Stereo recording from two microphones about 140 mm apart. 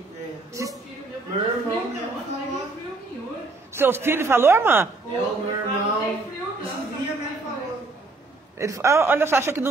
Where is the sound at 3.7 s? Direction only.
15° right (ahead or behind).